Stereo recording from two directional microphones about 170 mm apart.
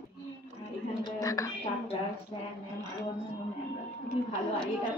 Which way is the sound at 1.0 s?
20° left (ahead or behind).